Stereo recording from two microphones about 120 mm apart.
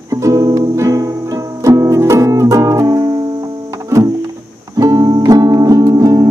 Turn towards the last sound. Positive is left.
turn(degrees=-30)  # may be behind; listen again after turning